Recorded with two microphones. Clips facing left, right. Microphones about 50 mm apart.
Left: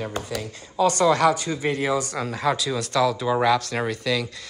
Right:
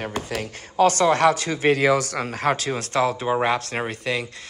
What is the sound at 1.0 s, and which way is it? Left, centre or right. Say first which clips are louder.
Speech: left 2 dB; right.